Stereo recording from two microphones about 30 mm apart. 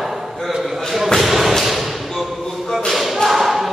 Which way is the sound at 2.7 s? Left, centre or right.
Centre.